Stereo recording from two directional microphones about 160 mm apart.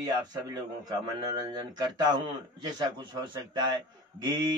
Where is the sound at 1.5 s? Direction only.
30° right (ahead or behind).